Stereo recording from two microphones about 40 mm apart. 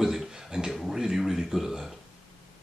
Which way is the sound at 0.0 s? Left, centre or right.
Centre.